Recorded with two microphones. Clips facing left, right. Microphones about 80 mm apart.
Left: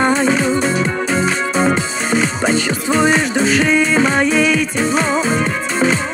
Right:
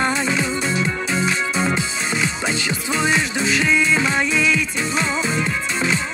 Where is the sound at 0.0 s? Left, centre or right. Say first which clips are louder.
Left 6 dB; left.